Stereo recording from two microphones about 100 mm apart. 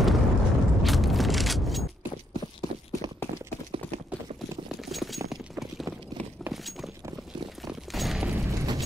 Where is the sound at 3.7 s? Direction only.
75° right (ahead or behind).